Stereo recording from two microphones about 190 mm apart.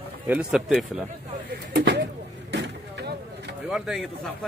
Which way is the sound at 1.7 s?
65° right (ahead or behind).